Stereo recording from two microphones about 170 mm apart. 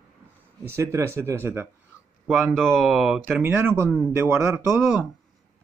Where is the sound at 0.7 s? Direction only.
15° right (ahead or behind).